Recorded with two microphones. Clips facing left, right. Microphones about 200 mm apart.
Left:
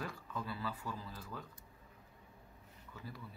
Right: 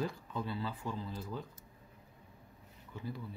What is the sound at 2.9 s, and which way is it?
Speech, 25° right (ahead or behind).